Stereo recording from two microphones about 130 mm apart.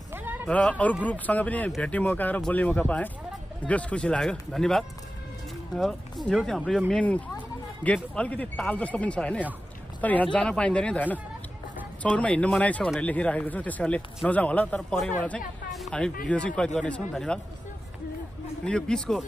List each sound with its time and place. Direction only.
0.1 s a sound: 15° right (ahead or behind)
0.5 s a man's voice: 10° left (ahead or behind)
18.6 s speech: 5° left (ahead or behind)